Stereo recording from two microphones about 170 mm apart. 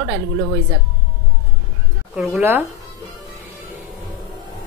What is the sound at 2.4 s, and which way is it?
Speech, 10° right (ahead or behind).